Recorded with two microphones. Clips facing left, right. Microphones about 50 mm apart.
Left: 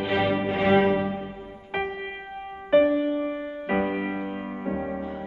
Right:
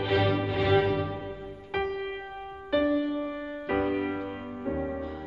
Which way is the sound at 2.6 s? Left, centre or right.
Left.